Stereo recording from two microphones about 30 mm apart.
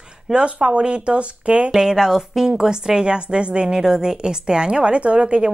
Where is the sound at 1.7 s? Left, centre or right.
Centre; by 3.6 s right.